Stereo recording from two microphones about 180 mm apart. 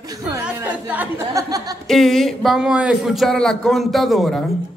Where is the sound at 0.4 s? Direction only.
10° right (ahead or behind).